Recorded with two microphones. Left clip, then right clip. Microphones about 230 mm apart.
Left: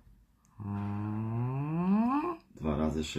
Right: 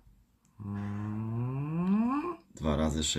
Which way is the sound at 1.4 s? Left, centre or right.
Centre.